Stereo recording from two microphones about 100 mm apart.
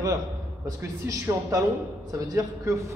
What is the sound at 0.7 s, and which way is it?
A man's voice, 35° right (ahead or behind).